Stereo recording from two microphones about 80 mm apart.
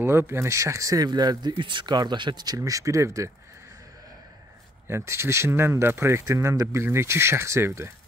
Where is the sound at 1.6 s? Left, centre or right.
Right.